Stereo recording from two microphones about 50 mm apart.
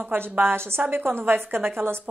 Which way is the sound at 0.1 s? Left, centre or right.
Right.